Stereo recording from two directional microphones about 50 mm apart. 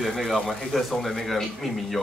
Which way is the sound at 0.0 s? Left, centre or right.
Centre.